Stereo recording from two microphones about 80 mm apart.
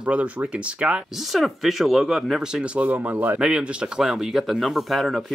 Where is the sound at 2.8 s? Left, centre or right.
Right; by 5.3 s centre.